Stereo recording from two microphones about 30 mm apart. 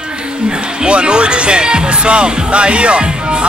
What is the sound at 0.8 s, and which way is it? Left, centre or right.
Speech, right.